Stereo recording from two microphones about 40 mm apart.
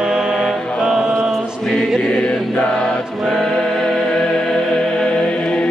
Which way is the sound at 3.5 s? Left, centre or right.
Centre.